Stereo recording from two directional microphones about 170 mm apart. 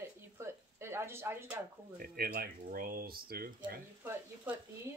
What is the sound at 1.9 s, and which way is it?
Speech, 65° right (ahead or behind).